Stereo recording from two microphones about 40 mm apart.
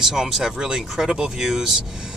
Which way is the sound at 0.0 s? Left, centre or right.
Centre.